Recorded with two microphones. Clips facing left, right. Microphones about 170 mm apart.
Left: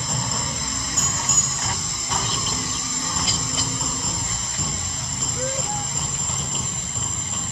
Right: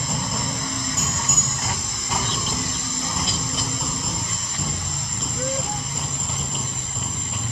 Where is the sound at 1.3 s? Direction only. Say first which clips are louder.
Right 2 dB; centre (ahead or behind).